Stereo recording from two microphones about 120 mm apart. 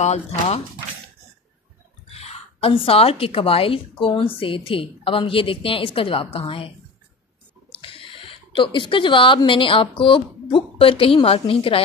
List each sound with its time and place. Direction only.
0.0 s speech: 65° left (ahead or behind)
2.0 s a woman's voice: 60° left (ahead or behind)
7.8 s a sound: 50° left (ahead or behind)
9.4 s a woman's voice: 45° left (ahead or behind)